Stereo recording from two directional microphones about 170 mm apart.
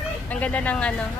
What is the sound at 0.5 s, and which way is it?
Speech, 10° left (ahead or behind).